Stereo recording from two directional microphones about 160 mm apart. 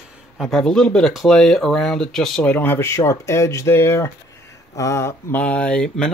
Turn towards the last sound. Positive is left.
turn(degrees=5)  # may be behind; listen again after turning